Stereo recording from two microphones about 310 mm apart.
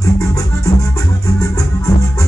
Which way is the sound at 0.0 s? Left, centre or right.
Centre.